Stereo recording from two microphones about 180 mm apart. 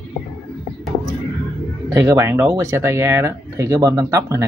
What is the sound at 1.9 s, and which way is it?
Speech, 15° right (ahead or behind).